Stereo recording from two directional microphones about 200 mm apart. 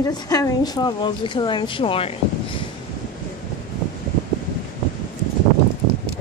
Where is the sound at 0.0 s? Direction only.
20° left (ahead or behind).